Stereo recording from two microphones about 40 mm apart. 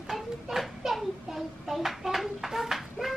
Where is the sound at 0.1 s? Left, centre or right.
Centre.